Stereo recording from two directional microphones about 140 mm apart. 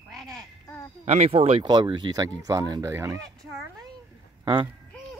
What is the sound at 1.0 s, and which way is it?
Speech, 50° right (ahead or behind).